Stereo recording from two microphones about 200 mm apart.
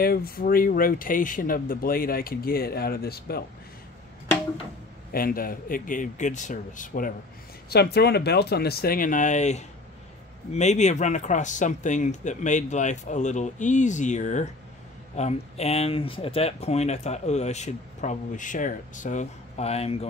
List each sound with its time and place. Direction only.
0.0 s speech: 50° left (ahead or behind)
5.1 s speech: 45° left (ahead or behind); by 20.1 s 30° left (ahead or behind)